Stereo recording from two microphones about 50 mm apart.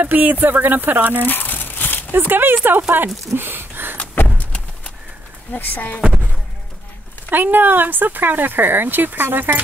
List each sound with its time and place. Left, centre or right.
0.0 s speech: right
1.2 s crumpling: left
2.1 s speech: right
3.3 s a sound: right
4.2 s horse: left
5.5 s speech: left
7.2 s speech: right